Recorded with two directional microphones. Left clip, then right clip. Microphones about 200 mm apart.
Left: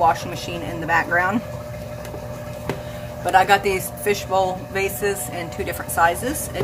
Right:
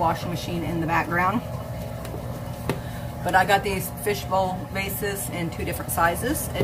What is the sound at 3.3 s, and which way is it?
Speech, 40° left (ahead or behind).